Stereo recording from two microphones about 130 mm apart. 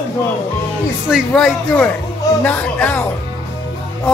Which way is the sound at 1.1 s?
5° left (ahead or behind).